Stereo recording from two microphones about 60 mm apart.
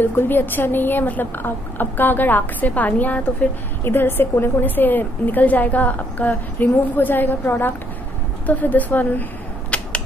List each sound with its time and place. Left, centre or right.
0.0 s a woman's voice: left
3.8 s a woman's voice: left
9.7 s mechanisms: left